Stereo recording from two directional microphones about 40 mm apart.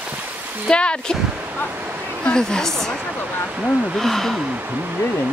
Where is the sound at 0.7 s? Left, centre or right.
Left; by 4.3 s centre.